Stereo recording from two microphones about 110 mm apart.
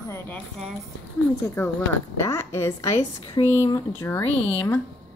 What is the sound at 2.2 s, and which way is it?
A woman's voice, 25° left (ahead or behind).